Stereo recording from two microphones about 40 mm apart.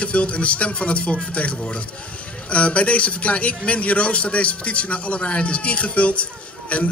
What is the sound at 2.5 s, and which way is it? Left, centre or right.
A man's voice, left.